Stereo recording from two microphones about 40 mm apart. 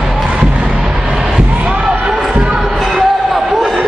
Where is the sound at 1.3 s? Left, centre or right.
Right.